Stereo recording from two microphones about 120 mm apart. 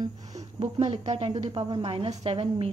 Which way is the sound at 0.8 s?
60° right (ahead or behind).